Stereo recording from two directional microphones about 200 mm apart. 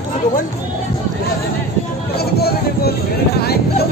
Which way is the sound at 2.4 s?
50° left (ahead or behind).